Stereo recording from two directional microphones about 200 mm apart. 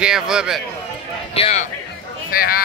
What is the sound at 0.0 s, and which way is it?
Speech, 5° right (ahead or behind).